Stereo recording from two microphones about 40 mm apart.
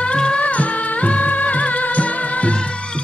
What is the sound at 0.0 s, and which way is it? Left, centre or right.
Music, left.